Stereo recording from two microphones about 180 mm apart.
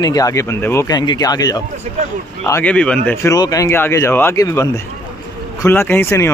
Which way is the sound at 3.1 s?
20° left (ahead or behind).